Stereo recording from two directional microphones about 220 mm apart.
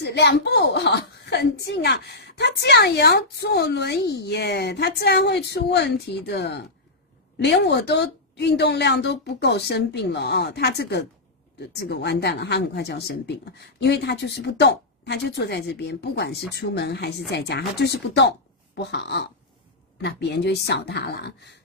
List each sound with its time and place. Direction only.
0.0 s speech: 50° left (ahead or behind)